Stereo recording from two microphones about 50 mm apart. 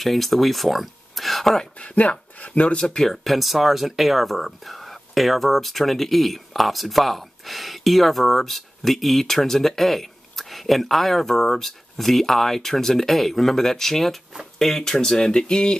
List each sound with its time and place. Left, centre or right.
0.0 s speech: centre
1.6 s speech: left
2.8 s speech: centre
3.3 s speech: centre